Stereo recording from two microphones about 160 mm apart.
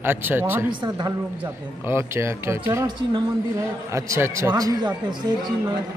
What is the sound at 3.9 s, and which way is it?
A man's voice, 20° right (ahead or behind).